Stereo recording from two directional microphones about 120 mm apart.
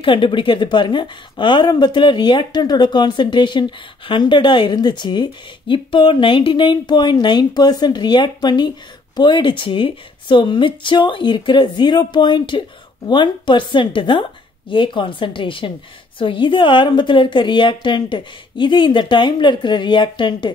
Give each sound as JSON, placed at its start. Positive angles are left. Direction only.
{"t": 0.0, "sound": "a woman's voice", "side_deg": 45}